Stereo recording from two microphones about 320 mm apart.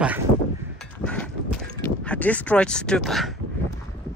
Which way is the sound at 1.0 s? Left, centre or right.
Centre.